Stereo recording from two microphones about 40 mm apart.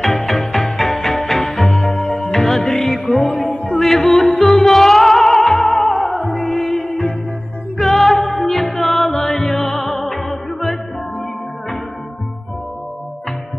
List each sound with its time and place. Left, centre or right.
0.0 s music: centre
3.4 s music: left
3.8 s music: centre